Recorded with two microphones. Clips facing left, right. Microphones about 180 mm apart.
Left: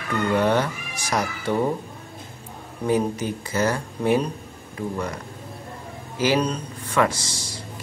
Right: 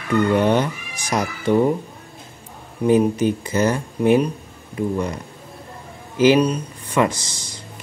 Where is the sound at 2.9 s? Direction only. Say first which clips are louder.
Right 6 dB; 20° right (ahead or behind).